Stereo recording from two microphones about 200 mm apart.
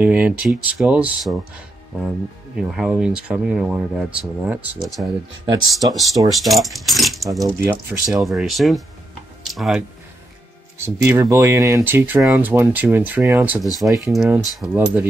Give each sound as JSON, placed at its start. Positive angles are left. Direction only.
{"t": 0.0, "sound": "speech", "side_deg": -5}
{"t": 2.5, "sound": "speech", "side_deg": -5}
{"t": 5.5, "sound": "speech", "side_deg": -20}
{"t": 5.9, "sound": "speech", "side_deg": 0}
{"t": 7.4, "sound": "speech", "side_deg": -10}
{"t": 8.2, "sound": "speech", "side_deg": 0}
{"t": 11.1, "sound": "speech", "side_deg": -15}